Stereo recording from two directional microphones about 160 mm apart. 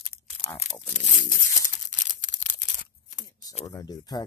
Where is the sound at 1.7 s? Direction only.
50° left (ahead or behind).